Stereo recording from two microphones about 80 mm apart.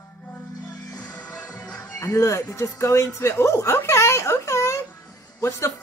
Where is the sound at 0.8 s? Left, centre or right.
Left.